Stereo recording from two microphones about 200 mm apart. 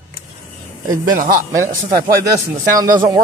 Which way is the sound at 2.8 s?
20° right (ahead or behind).